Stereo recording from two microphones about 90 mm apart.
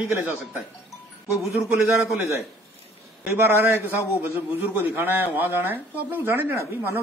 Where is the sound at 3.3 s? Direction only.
25° right (ahead or behind).